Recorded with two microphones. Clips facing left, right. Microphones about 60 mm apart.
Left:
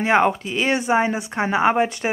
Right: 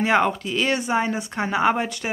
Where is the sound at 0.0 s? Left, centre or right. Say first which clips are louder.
Left 2 dB; centre.